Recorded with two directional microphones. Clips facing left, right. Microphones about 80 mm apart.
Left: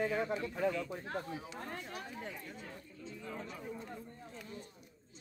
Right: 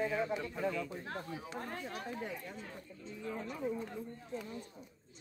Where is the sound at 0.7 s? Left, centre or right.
Centre.